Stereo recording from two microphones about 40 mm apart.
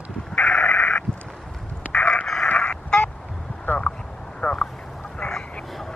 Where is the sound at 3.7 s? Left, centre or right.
Left.